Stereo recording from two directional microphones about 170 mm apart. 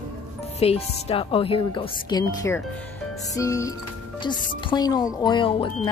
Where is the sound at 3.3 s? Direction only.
20° left (ahead or behind).